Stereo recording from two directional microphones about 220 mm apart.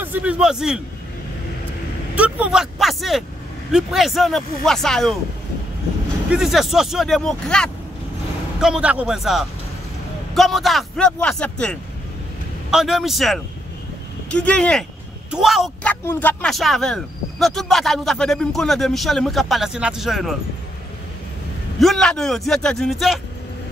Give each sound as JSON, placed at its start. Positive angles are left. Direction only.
{"t": 0.0, "sound": "speech", "side_deg": -5}
{"t": 2.1, "sound": "speech", "side_deg": -5}
{"t": 6.3, "sound": "speech", "side_deg": 0}
{"t": 21.7, "sound": "speech", "side_deg": 0}